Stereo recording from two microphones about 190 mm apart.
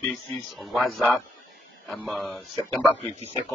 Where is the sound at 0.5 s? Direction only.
Centre (ahead or behind).